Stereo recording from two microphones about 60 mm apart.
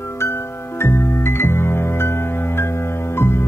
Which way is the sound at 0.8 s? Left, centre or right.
Left.